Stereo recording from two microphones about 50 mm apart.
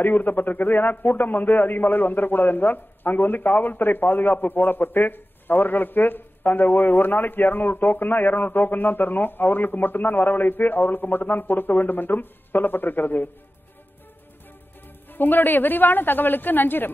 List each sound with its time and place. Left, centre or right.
0.0 s a man's voice: left
15.0 s a man's voice: left